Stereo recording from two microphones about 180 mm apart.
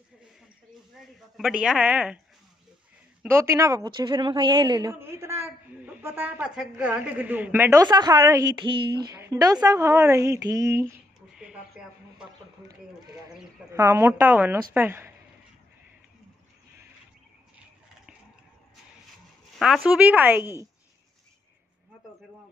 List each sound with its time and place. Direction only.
1.3 s a woman's voice: 5° right (ahead or behind)
3.2 s a woman's voice: 15° right (ahead or behind)
8.5 s a woman's voice: 25° right (ahead or behind)
11.3 s a sound: 5° right (ahead or behind)
13.7 s a woman's voice: 15° right (ahead or behind)
19.9 s a woman's voice: 10° right (ahead or behind)